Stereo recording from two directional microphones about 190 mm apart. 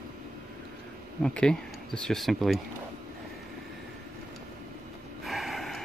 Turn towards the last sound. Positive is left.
turn(degrees=0)  # may be behind; listen again after turning